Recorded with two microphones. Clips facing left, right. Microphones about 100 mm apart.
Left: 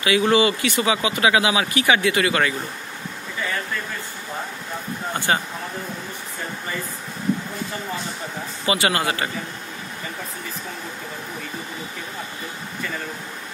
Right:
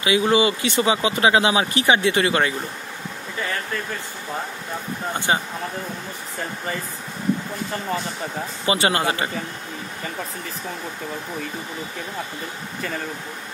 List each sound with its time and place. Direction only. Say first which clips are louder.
0.0 s speech: even; 20° right (ahead or behind)
5.3 s speech: even; 20° right (ahead or behind)
8.6 s speech: right 1 dB; 30° right (ahead or behind)